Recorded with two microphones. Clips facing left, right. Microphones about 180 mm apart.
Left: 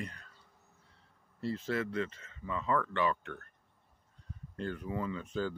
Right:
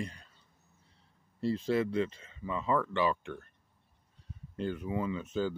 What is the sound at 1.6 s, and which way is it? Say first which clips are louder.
Speech: right 5 dB; 15° right (ahead or behind).